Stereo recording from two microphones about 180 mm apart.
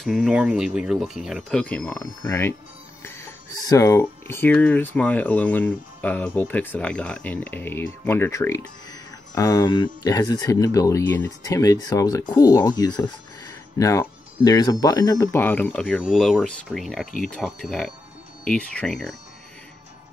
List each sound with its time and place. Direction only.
0.0 s speech: centre (ahead or behind)